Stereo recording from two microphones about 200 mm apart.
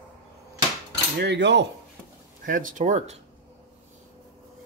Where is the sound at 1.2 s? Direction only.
60° right (ahead or behind).